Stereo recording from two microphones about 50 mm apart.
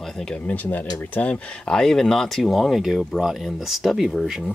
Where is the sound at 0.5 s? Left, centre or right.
Left.